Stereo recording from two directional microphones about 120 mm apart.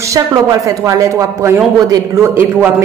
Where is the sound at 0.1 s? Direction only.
25° right (ahead or behind).